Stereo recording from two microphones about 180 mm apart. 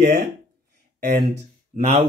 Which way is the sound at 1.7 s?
45° right (ahead or behind).